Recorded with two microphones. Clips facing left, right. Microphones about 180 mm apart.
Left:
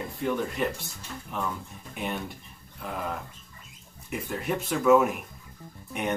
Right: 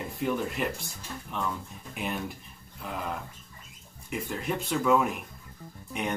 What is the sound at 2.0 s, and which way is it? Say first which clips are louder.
Speech: left 1 dB; centre (ahead or behind).